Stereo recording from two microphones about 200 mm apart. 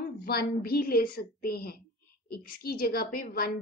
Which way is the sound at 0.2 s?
50° left (ahead or behind).